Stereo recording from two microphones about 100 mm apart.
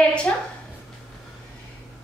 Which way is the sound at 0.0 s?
10° left (ahead or behind).